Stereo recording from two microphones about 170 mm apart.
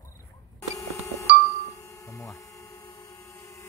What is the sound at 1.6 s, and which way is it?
Hum, 15° left (ahead or behind).